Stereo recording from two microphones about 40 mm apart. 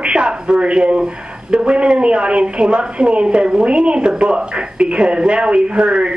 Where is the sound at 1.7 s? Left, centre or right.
Right.